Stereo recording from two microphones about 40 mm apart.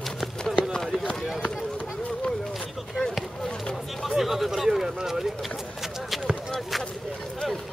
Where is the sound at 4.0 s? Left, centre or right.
Centre.